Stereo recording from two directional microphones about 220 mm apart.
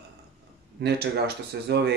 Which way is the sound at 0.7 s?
45° right (ahead or behind).